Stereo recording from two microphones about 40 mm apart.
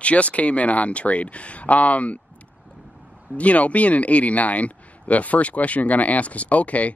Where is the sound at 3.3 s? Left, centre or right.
Left.